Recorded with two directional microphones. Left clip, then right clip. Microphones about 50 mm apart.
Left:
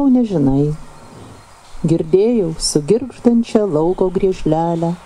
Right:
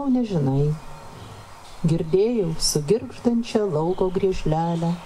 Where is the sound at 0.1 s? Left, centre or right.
Left.